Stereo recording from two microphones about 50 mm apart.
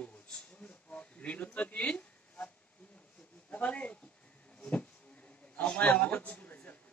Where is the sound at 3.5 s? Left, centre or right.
Left.